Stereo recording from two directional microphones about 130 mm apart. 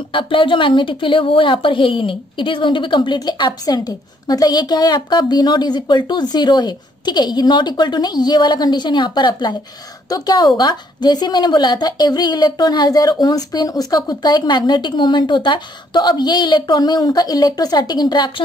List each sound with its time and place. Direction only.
0.1 s a woman's voice: 40° left (ahead or behind)